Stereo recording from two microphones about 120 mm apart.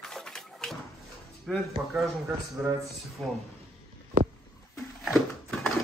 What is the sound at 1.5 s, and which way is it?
Speech, 5° left (ahead or behind).